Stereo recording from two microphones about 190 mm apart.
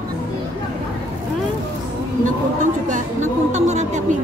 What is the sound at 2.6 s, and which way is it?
Speech, 40° right (ahead or behind).